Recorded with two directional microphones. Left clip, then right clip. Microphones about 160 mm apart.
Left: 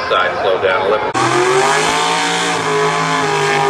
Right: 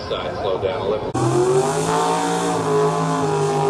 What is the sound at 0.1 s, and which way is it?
Speech, 25° left (ahead or behind).